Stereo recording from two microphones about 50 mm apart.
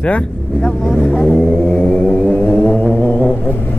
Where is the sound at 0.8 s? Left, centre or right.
Centre.